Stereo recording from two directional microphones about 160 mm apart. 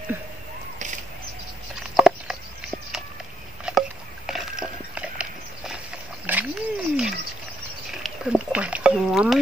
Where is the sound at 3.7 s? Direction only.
Centre (ahead or behind).